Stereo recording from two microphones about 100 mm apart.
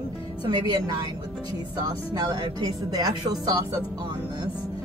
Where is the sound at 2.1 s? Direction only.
40° right (ahead or behind).